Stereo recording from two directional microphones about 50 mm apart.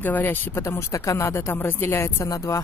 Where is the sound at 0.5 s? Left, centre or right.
Left.